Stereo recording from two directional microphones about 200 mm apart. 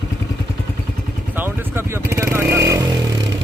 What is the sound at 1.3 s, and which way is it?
Vehicle, 10° right (ahead or behind).